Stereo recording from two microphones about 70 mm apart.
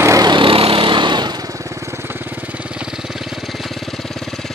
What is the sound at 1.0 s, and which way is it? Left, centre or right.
Motorcycle, right.